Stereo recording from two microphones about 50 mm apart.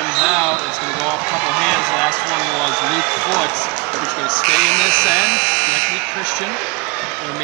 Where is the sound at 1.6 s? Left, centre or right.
Centre.